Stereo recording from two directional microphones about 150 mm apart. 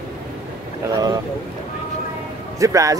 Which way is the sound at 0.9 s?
25° right (ahead or behind).